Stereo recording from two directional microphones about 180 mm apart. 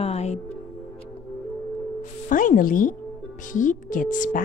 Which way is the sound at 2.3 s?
50° left (ahead or behind).